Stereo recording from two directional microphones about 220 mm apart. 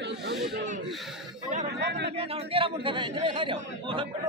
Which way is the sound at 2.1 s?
25° right (ahead or behind).